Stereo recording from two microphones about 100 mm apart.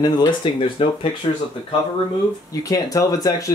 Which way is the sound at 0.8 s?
65° left (ahead or behind).